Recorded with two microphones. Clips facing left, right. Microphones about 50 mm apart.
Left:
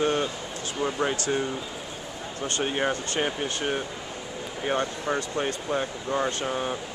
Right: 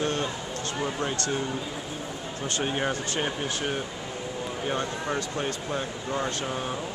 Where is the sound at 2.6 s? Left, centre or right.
Centre.